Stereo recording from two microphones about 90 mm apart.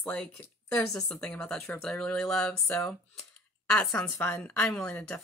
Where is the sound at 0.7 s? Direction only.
5° left (ahead or behind).